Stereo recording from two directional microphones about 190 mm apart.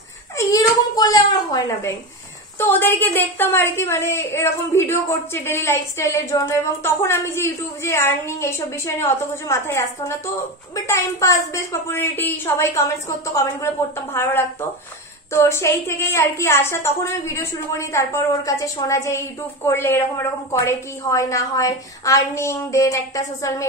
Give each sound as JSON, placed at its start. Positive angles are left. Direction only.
{"t": 0.4, "sound": "a child's voice", "side_deg": 20}